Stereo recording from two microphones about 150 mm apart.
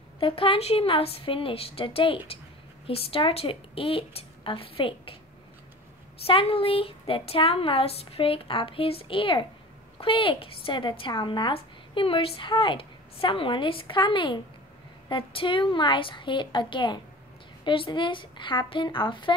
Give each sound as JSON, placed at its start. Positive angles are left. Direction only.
{"t": 0.2, "sound": "a woman's voice", "side_deg": 35}
{"t": 6.2, "sound": "a woman's voice", "side_deg": 40}